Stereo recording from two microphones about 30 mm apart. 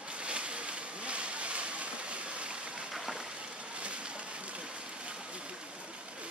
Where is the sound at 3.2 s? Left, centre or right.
Right.